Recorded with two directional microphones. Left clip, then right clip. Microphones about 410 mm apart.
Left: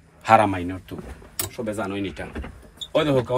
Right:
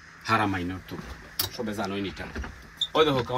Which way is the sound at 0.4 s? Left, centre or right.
Centre.